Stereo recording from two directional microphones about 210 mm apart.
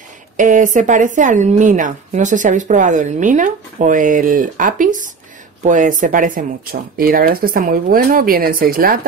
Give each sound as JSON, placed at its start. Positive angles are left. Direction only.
{"t": 0.4, "sound": "a woman's voice", "side_deg": -40}